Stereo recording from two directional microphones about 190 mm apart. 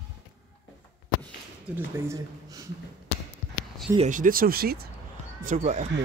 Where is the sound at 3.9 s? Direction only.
40° right (ahead or behind).